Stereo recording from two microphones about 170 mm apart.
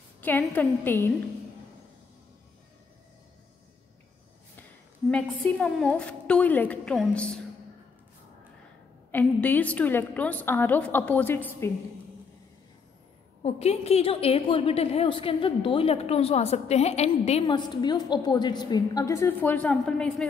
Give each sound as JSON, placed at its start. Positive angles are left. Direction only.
{"t": 0.2, "sound": "a woman's voice", "side_deg": 10}
{"t": 5.1, "sound": "a woman's voice", "side_deg": 5}
{"t": 9.1, "sound": "a woman's voice", "side_deg": 10}
{"t": 13.4, "sound": "a woman's voice", "side_deg": 40}
{"t": 17.5, "sound": "a woman's voice", "side_deg": 25}